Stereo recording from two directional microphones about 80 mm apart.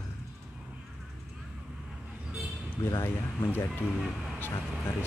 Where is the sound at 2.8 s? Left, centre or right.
Left.